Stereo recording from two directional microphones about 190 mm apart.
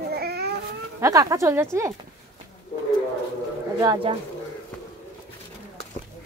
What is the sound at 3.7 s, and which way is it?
Speech, 25° right (ahead or behind).